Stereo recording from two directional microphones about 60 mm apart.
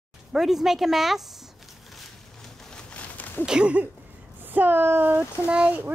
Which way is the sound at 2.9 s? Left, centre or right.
Left.